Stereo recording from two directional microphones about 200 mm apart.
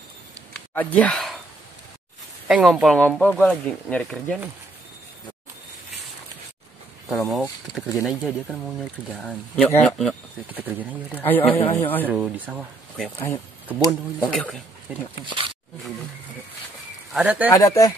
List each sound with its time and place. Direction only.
0.5 s a sound: 5° left (ahead or behind)
2.4 s speech: centre (ahead or behind)
7.1 s speech: centre (ahead or behind)
10.5 s speech: 10° right (ahead or behind)
11.1 s speech: 10° left (ahead or behind)
11.6 s speech: 30° left (ahead or behind)
12.1 s speech: 10° right (ahead or behind)
14.2 s speech: 5° left (ahead or behind)
15.2 s snake: 25° right (ahead or behind)
17.1 s speech: 5° right (ahead or behind)
17.5 s speech: 15° left (ahead or behind)